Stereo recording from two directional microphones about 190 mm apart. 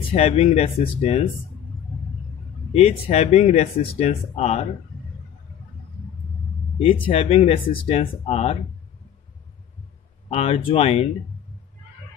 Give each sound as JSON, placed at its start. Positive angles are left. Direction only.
{"t": 0.1, "sound": "speech", "side_deg": 35}
{"t": 2.7, "sound": "speech", "side_deg": 35}
{"t": 7.1, "sound": "speech", "side_deg": 30}
{"t": 10.3, "sound": "speech", "side_deg": 30}